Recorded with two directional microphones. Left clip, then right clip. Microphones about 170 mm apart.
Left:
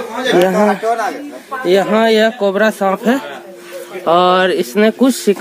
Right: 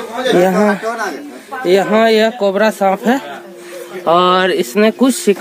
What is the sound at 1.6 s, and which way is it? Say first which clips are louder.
Speech: right 1 dB; 10° right (ahead or behind).